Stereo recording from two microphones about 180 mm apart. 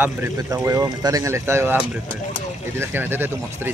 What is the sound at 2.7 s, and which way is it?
Speech, 10° right (ahead or behind).